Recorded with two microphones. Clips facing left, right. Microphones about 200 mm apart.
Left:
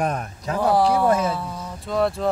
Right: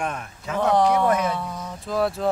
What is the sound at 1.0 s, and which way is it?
Speech, 30° left (ahead or behind).